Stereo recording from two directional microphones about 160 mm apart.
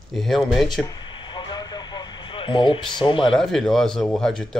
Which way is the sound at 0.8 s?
25° left (ahead or behind).